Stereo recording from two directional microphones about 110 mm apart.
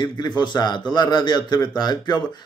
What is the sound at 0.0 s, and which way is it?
A man's voice, 40° left (ahead or behind).